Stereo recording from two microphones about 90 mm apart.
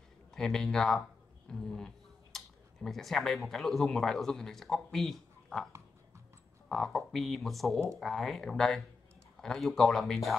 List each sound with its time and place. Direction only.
0.3 s speech: 5° left (ahead or behind)
6.7 s speech: 5° left (ahead or behind)